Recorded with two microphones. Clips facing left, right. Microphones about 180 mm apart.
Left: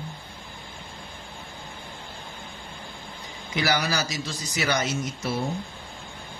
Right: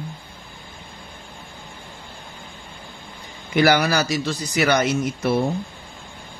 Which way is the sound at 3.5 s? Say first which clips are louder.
Right 8 dB; 60° right (ahead or behind).